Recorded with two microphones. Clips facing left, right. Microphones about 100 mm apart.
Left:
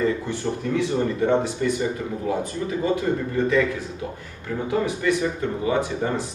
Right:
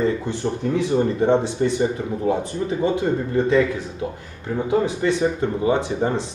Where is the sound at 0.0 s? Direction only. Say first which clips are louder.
Right 2 dB; 20° right (ahead or behind).